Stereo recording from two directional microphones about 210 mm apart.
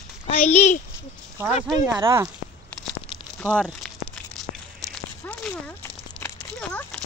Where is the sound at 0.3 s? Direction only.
30° left (ahead or behind).